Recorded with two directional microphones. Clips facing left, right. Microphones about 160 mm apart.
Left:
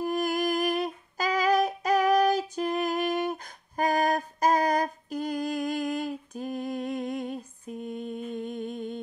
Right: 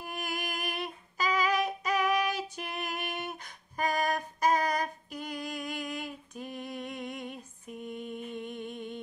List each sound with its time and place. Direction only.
0.0 s female singing: 40° left (ahead or behind)